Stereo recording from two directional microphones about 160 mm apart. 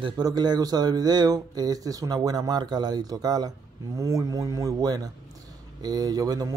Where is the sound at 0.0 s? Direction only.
25° right (ahead or behind).